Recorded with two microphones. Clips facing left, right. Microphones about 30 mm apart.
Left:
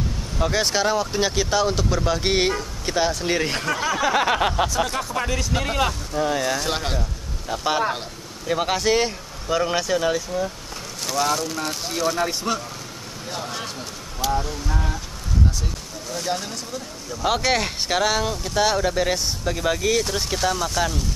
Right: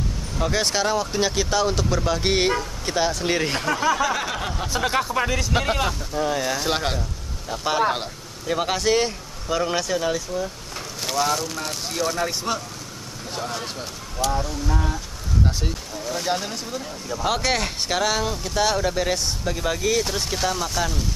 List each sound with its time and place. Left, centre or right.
0.4 s speech: centre
4.0 s a sound: left
4.7 s speech: right
5.1 s speech: centre
5.8 s speech: centre
7.0 s a sound: centre
7.8 s speech: centre
8.5 s speech: centre
14.2 s speech: centre
16.1 s speech: centre
17.2 s speech: centre